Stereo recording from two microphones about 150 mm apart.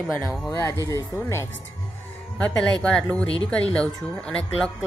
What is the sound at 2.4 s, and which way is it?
A woman's voice, 5° left (ahead or behind).